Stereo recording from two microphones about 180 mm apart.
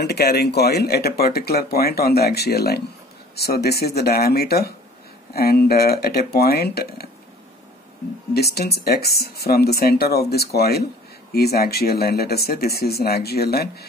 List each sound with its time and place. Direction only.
0.0 s speech: 65° left (ahead or behind)
8.3 s speech: 60° left (ahead or behind)